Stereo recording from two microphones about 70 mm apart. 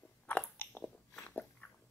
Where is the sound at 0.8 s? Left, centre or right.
Centre.